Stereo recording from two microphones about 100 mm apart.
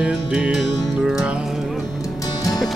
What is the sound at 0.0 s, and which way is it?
Music, 10° right (ahead or behind).